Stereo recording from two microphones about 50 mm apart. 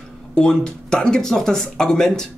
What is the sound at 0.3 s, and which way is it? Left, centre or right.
Speech, centre.